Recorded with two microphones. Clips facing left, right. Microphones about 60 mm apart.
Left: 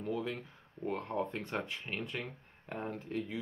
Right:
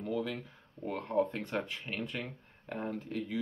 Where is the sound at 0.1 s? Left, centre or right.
Centre.